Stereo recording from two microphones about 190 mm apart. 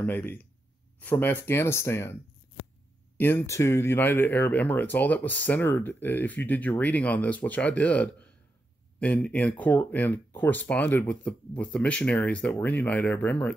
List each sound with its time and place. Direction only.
0.0 s speech: 10° left (ahead or behind)
3.2 s speech: 10° left (ahead or behind)